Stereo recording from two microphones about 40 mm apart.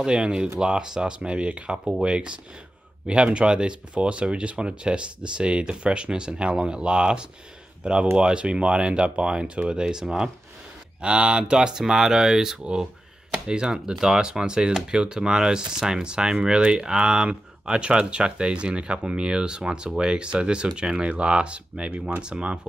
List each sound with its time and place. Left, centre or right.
0.0 s speech: right
11.7 s speech: centre